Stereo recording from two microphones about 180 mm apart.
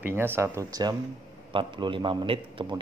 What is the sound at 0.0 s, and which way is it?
Speech, 10° right (ahead or behind).